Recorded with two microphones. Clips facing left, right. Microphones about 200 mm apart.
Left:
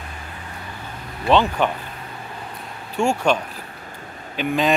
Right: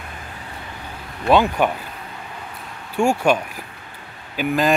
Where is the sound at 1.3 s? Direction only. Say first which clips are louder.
Right 1 dB; 10° right (ahead or behind).